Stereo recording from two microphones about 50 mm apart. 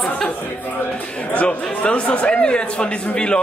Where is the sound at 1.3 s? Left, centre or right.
Centre.